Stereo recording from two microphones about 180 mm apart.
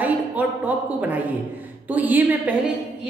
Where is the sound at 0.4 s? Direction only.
10° right (ahead or behind).